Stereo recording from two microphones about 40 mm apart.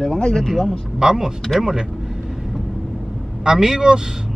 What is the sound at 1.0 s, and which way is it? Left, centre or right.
Speech, centre.